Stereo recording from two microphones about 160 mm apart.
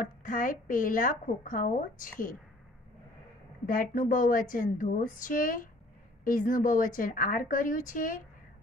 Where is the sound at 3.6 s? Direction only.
60° left (ahead or behind).